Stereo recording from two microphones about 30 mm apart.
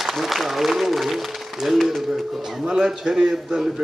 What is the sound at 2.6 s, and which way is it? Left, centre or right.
A man's voice, right.